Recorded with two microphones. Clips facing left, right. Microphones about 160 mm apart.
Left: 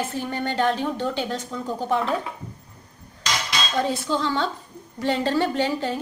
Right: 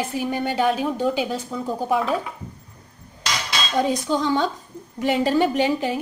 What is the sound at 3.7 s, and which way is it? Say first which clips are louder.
A woman's voice: right 3 dB; 15° right (ahead or behind).